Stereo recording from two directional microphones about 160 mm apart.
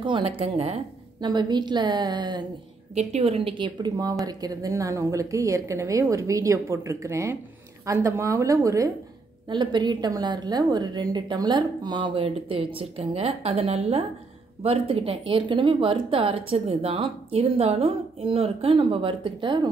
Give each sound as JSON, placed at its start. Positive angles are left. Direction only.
{"t": 0.0, "sound": "speech", "side_deg": -35}
{"t": 1.2, "sound": "a woman's voice", "side_deg": -25}
{"t": 2.9, "sound": "a woman's voice", "side_deg": -45}